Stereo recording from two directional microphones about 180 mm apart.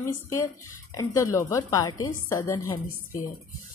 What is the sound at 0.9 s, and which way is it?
A woman's voice, 20° left (ahead or behind).